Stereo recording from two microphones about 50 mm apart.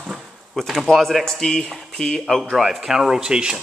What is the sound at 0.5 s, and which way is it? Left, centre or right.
Speech, centre.